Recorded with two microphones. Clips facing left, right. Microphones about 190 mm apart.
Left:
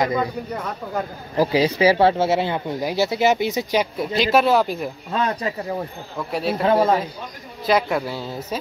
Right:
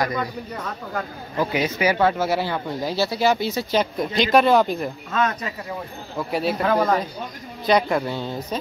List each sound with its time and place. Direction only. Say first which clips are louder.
0.0 s speech: left 3 dB; 20° left (ahead or behind)
1.3 s speech: left 5 dB; 35° left (ahead or behind); by 4.9 s 5° left (ahead or behind)
5.1 s speech: left 2 dB; 30° left (ahead or behind)
6.1 s speech: right 1 dB; centre (ahead or behind)
6.6 s speech: left 4 dB; 25° left (ahead or behind)
7.6 s speech: even; 5° left (ahead or behind)